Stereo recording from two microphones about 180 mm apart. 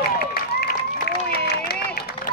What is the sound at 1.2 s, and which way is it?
Run, 60° left (ahead or behind).